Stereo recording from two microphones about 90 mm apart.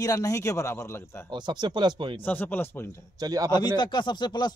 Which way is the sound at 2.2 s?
20° left (ahead or behind).